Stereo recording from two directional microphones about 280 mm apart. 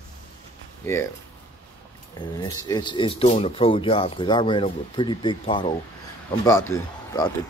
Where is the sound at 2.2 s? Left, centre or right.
Centre.